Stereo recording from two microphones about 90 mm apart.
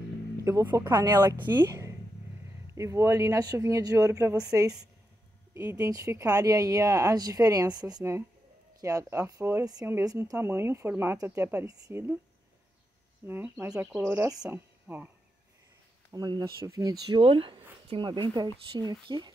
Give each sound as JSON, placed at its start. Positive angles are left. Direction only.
{"t": 0.4, "sound": "speech", "side_deg": -35}
{"t": 0.8, "sound": "speech", "side_deg": -50}
{"t": 1.7, "sound": "a sound", "side_deg": -35}
{"t": 2.7, "sound": "speech", "side_deg": -35}
{"t": 10.0, "sound": "a woman's voice", "side_deg": -40}
{"t": 13.3, "sound": "a woman's voice", "side_deg": -25}
{"t": 16.1, "sound": "speech", "side_deg": -45}
{"t": 17.1, "sound": "speech", "side_deg": -80}
{"t": 17.8, "sound": "speech", "side_deg": -65}